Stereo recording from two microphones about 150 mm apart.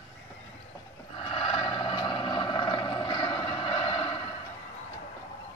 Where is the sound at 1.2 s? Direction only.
35° left (ahead or behind).